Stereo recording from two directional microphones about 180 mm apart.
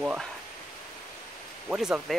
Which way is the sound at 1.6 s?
5° right (ahead or behind).